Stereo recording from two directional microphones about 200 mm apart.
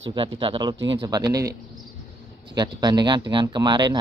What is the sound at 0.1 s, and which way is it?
Speech, 25° right (ahead or behind).